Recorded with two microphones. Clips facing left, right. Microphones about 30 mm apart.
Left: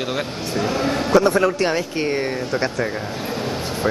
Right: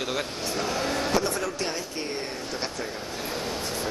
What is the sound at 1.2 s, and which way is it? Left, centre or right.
Speech, left.